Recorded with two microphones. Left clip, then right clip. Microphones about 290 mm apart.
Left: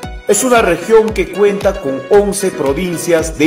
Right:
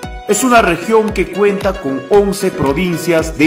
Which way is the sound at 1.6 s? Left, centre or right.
Right.